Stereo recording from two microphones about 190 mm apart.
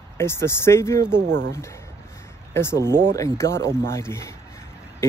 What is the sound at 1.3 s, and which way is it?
Speech, 65° right (ahead or behind).